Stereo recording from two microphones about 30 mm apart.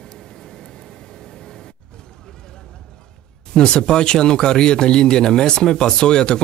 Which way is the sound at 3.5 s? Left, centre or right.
Left.